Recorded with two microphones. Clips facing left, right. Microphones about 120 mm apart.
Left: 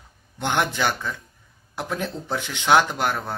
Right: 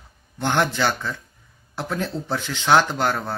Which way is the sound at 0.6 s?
15° left (ahead or behind).